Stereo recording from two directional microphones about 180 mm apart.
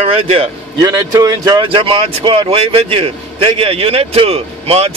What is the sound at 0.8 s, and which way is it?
Speech, 20° right (ahead or behind).